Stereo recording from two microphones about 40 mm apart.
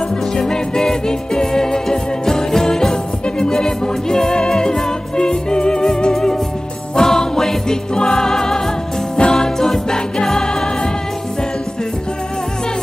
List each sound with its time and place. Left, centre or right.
0.4 s music: centre